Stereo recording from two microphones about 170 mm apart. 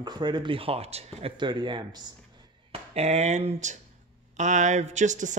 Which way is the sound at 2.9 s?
40° right (ahead or behind).